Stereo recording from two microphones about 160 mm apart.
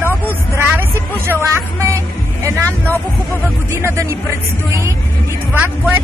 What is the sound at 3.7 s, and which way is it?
Speech, 15° right (ahead or behind).